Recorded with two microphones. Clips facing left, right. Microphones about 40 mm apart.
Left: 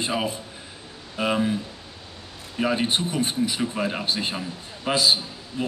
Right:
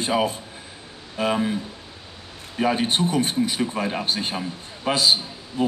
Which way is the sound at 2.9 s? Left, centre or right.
Right.